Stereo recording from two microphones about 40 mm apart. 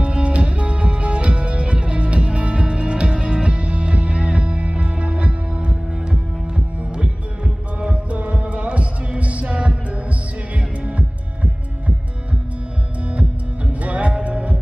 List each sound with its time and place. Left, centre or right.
0.0 s music: right
7.0 s music: right
13.8 s music: right